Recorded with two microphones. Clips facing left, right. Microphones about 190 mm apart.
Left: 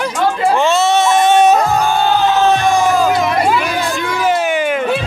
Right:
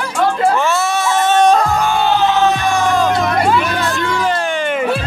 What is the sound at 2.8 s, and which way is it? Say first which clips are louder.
Music: left 2 dB; 5° left (ahead or behind).